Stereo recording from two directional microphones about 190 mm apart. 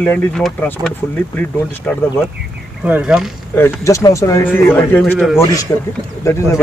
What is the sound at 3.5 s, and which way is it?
Speech, 15° left (ahead or behind).